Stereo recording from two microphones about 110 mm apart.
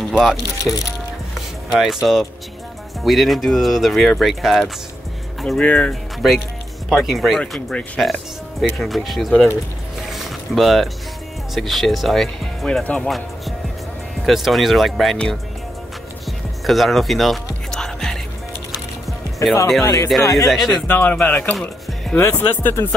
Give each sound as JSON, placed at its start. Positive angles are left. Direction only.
{"t": 0.1, "sound": "speech", "side_deg": -5}
{"t": 0.7, "sound": "speech", "side_deg": 10}
{"t": 1.7, "sound": "speech", "side_deg": 0}
{"t": 5.6, "sound": "speech", "side_deg": 10}
{"t": 6.9, "sound": "speech", "side_deg": 0}
{"t": 10.1, "sound": "boat", "side_deg": 0}
{"t": 11.5, "sound": "speech", "side_deg": 0}
{"t": 14.2, "sound": "speech", "side_deg": 0}
{"t": 16.3, "sound": "music", "side_deg": 0}
{"t": 19.4, "sound": "speech", "side_deg": 30}
{"t": 20.4, "sound": "speech", "side_deg": 0}
{"t": 20.8, "sound": "speech", "side_deg": 15}